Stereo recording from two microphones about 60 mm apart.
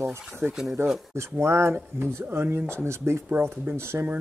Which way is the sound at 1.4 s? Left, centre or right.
Right.